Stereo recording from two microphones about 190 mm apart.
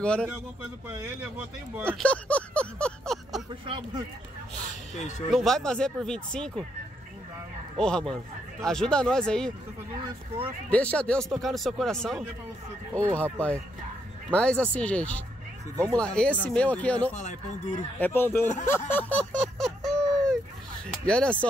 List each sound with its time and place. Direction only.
0.0 s speech: 5° left (ahead or behind)
1.9 s speech: 5° left (ahead or behind)
3.6 s speech: 25° right (ahead or behind)
5.3 s speech: centre (ahead or behind)
7.8 s speech: 5° left (ahead or behind)
10.7 s speech: 5° left (ahead or behind)
15.7 s speech: 15° right (ahead or behind)
16.0 s speech: 5° left (ahead or behind)
17.1 s speech: 40° left (ahead or behind)
17.9 s speech: 10° left (ahead or behind)
18.7 s a sound: 10° left (ahead or behind)
21.0 s speech: 5° left (ahead or behind)